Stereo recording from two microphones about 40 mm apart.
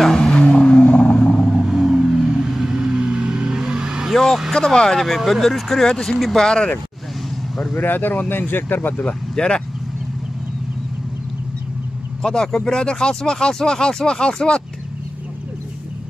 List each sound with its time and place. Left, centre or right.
0.0 s vehicle: centre
1.2 s vehicle: centre
1.7 s vehicle: centre
4.1 s vehicle: centre
4.6 s speech: centre
7.7 s speech: left
9.0 s speech: left
12.2 s speech: centre